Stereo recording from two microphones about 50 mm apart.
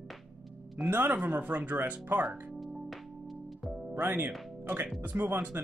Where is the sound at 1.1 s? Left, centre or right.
Right.